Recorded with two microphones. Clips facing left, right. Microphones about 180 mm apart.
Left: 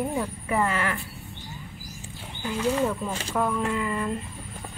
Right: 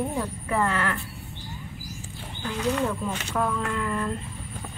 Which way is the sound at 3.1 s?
35° left (ahead or behind).